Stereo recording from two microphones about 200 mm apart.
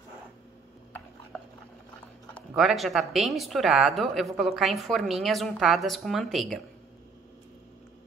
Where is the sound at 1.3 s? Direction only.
5° left (ahead or behind).